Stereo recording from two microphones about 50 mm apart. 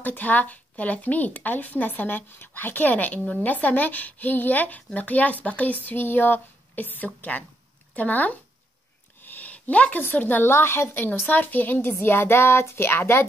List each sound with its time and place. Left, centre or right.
0.0 s a woman's voice: left
9.2 s a sound: left
9.9 s a woman's voice: left
10.5 s a woman's voice: left
11.2 s a woman's voice: left
11.8 s a woman's voice: left